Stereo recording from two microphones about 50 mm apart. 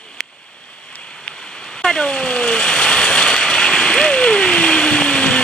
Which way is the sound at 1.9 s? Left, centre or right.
Centre.